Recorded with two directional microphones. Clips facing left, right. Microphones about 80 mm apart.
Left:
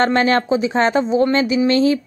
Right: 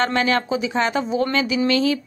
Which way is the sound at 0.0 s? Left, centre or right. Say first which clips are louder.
Left 4 dB; left.